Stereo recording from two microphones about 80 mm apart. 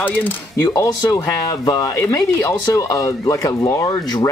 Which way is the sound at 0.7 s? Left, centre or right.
Left.